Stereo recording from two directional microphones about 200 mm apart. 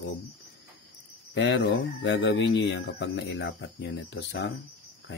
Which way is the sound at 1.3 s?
60° left (ahead or behind).